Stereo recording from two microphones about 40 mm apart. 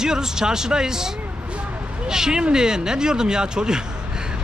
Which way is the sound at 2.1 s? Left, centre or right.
Centre.